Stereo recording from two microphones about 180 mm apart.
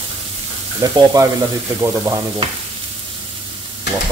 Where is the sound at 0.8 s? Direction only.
20° right (ahead or behind).